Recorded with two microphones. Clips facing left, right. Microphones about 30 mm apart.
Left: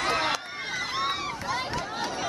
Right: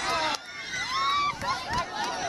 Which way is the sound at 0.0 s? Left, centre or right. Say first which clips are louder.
Left 2 dB; centre.